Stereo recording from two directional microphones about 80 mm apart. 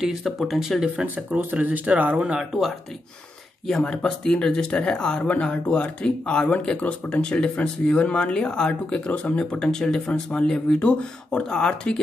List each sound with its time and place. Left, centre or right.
0.0 s speech: centre
0.9 s speech: right
3.6 s speech: centre